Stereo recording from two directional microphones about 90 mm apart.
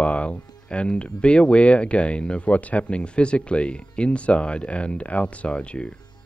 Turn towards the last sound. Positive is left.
turn(degrees=10)  # may be behind; listen again after turning